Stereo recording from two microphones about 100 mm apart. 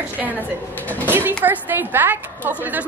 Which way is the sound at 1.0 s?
20° right (ahead or behind).